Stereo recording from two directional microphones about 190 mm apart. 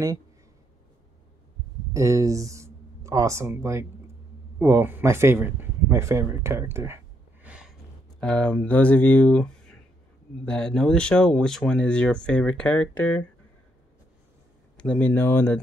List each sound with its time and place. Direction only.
2.0 s speech: 15° right (ahead or behind)
7.4 s a sound: 5° right (ahead or behind)
8.2 s speech: 5° left (ahead or behind)
14.8 s speech: 5° left (ahead or behind)